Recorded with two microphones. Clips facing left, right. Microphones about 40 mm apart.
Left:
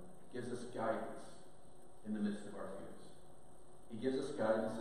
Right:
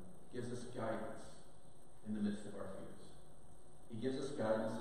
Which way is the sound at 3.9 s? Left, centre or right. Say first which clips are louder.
Left 3 dB; centre.